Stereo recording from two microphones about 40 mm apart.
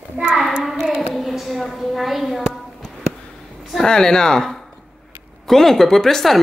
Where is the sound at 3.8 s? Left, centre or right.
Centre.